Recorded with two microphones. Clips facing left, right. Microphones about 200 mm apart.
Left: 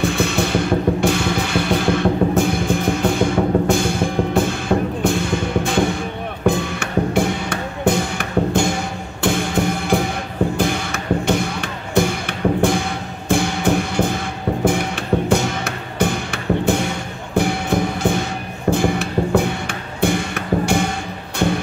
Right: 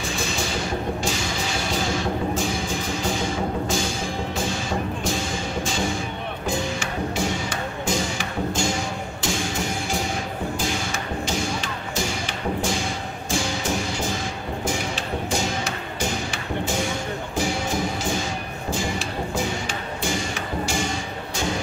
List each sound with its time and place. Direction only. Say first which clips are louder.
0.0 s music: left 9 dB; 60° left (ahead or behind)